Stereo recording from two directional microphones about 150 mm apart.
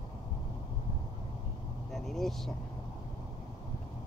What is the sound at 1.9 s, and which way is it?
Speech, centre (ahead or behind).